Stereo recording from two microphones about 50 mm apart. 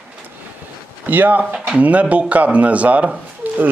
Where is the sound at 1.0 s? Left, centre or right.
Right.